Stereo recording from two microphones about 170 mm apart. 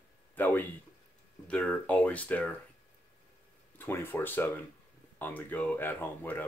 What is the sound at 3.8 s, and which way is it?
Speech, 10° left (ahead or behind).